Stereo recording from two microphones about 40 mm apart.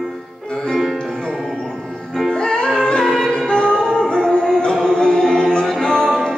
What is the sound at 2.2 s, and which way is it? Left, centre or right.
Music, centre.